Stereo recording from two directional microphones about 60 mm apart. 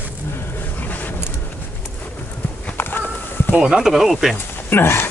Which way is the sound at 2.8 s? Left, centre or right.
Left.